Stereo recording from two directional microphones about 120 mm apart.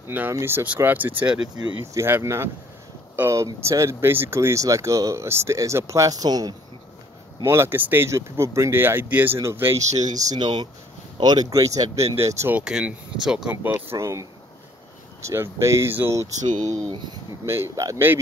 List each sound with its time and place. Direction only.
0.1 s speech: 20° right (ahead or behind)
7.4 s speech: 20° right (ahead or behind)
9.8 s speech: 80° right
10.2 s speech: 35° right (ahead or behind)
12.5 s speech: 10° right (ahead or behind)
13.6 s speech: 20° right (ahead or behind)
15.2 s speech: 20° right (ahead or behind)
16.9 s speech: 40° right (ahead or behind)
17.5 s speech: 25° right (ahead or behind)